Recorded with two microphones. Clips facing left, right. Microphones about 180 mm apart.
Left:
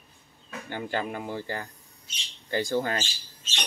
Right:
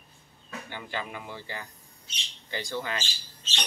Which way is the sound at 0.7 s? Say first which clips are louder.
Left 7 dB; 50° left (ahead or behind).